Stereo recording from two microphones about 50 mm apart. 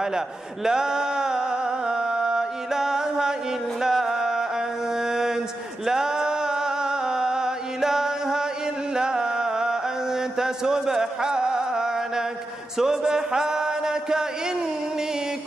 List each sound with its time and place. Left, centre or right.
0.7 s music: centre
5.0 s mantra: centre
5.9 s a sound: centre
12.7 s music: centre